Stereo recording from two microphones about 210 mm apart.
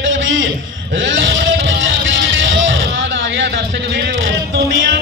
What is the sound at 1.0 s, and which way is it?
Music, 60° right (ahead or behind).